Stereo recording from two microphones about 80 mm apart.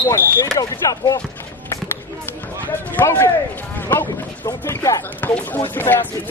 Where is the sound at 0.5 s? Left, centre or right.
Left.